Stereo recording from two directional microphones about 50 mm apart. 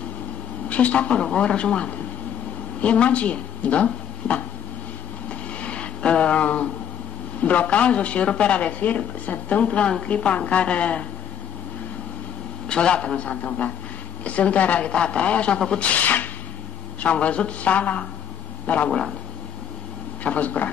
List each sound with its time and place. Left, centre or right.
0.7 s speech: left
5.6 s a sound: left
7.4 s speech: left
12.6 s speech: centre
20.2 s speech: left